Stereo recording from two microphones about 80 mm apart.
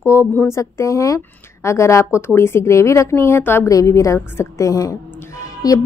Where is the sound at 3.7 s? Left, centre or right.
Left.